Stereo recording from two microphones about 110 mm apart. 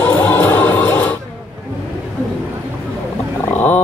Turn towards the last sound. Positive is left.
turn(degrees=15)  # may be behind; listen again after turning